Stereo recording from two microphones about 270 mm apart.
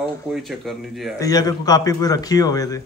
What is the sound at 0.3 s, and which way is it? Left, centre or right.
Speech, centre.